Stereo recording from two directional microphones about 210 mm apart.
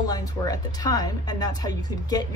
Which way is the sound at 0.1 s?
20° left (ahead or behind).